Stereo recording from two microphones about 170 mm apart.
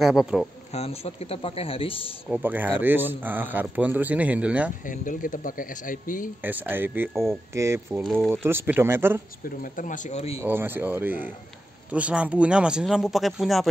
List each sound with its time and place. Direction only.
0.0 s speech: centre (ahead or behind)
0.7 s a man's voice: 40° left (ahead or behind)
2.2 s speech: 10° right (ahead or behind)
4.8 s speech: 50° left (ahead or behind)
6.4 s speech: 10° right (ahead or behind)
8.0 s speech: centre (ahead or behind)
8.5 s speech: 10° right (ahead or behind)
9.6 s speech: 50° left (ahead or behind)
10.4 s speech: 10° right (ahead or behind)